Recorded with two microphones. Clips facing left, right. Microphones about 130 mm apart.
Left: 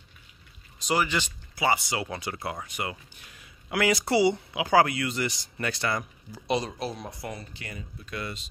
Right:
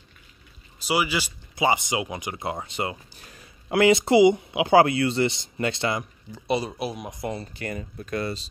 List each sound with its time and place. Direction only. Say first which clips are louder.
0.8 s speech: right 2 dB; 5° right (ahead or behind)
1.5 s speech: right 3 dB; 20° right (ahead or behind); by 3.7 s 40° right (ahead or behind)
3.7 s speech: right 6 dB; 25° right (ahead or behind)
6.4 s speech: right 2 dB; 5° right (ahead or behind); by 7.4 s 20° right (ahead or behind)
7.5 s speech: right 9 dB; 50° right (ahead or behind)